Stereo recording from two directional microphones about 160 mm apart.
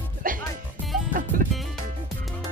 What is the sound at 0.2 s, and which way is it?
Music, 60° right (ahead or behind).